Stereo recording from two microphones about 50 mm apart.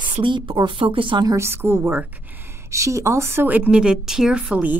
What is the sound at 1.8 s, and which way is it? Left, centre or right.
Speech, right.